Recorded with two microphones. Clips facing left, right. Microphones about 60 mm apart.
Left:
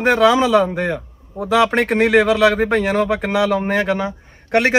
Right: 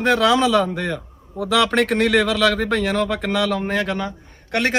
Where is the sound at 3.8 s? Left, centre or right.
Left.